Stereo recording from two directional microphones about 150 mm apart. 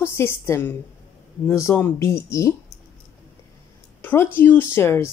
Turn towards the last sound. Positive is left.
turn(degrees=15)  # may be behind; listen again after turning